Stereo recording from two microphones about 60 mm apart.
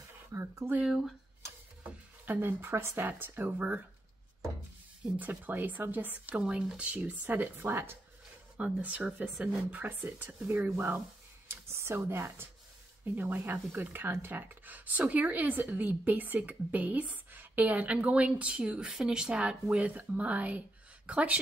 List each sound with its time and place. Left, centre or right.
0.3 s speech: right
0.8 s speech: centre
2.2 s speech: right
2.6 s speech: right
3.1 s speech: right
5.0 s a woman's voice: right
8.5 s a woman's voice: right
11.4 s a sound: right
13.0 s a woman's voice: right